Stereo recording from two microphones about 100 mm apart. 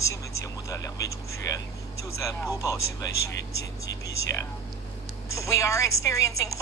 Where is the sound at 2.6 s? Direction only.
35° left (ahead or behind).